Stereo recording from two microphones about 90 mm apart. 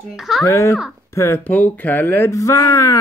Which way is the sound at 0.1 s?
5° right (ahead or behind).